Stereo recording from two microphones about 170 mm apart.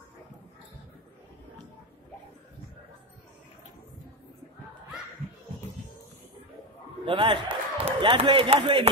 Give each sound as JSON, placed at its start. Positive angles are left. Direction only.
{"t": 7.1, "sound": "a man's voice", "side_deg": -30}